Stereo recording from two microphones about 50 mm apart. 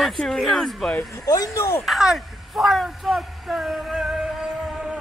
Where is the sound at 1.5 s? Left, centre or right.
Left.